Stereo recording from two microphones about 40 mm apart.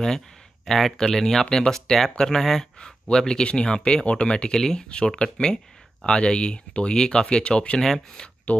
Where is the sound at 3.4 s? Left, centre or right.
Left.